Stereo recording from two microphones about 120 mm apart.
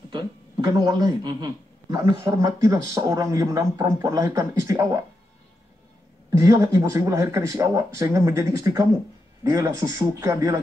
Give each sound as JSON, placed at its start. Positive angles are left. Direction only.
{"t": 0.1, "sound": "speech", "side_deg": -35}
{"t": 2.2, "sound": "speech", "side_deg": -25}
{"t": 6.3, "sound": "speech", "side_deg": -25}